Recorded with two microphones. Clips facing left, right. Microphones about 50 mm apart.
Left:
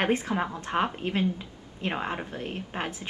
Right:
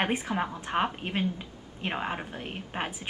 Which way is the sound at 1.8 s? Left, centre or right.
Centre.